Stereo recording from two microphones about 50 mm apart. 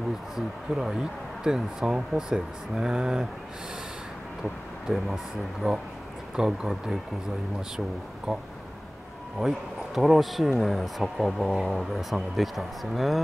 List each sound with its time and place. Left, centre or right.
1.4 s speech: centre
4.8 s speech: centre
8.3 s speech: centre